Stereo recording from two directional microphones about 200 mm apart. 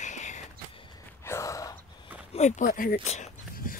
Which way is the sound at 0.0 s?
35° left (ahead or behind).